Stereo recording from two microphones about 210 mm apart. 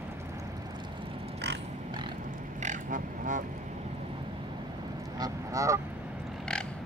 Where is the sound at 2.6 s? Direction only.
35° right (ahead or behind).